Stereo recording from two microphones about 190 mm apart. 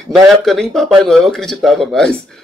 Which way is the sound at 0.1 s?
Centre (ahead or behind).